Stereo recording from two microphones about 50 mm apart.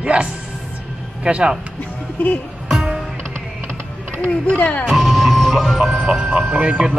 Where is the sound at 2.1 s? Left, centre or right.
Left.